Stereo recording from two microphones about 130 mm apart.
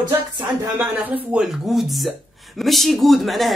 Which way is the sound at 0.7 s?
15° right (ahead or behind).